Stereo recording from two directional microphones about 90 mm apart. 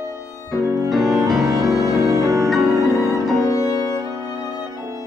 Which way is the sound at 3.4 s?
40° left (ahead or behind).